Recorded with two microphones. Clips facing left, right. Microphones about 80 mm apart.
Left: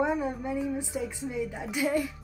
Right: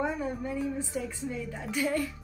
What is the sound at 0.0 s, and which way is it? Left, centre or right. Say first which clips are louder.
A woman's voice: left 3 dB; centre.